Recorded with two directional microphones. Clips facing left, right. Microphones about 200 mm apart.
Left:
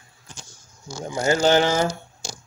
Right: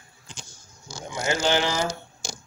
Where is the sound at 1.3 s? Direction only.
45° left (ahead or behind).